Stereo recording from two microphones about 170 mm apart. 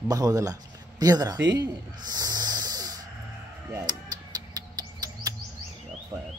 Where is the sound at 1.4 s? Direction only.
90° right.